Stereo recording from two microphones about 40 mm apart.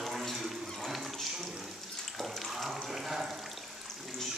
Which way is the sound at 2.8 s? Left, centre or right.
Centre.